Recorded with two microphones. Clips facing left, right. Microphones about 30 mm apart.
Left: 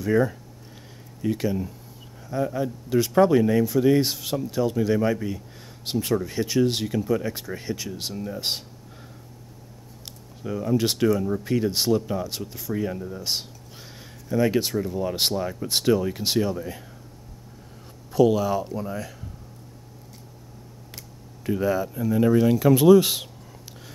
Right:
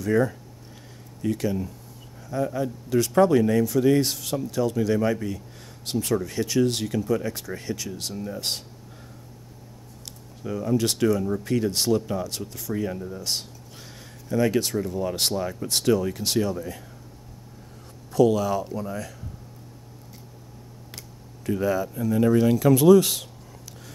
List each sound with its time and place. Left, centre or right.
0.0 s speech: centre
10.4 s speech: centre
13.2 s a sound: centre
14.3 s speech: centre
18.1 s speech: centre
21.5 s speech: centre